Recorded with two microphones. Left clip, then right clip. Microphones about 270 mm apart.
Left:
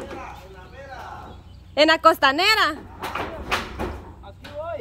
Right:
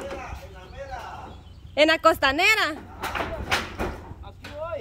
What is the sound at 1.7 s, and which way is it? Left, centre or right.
Speech, centre.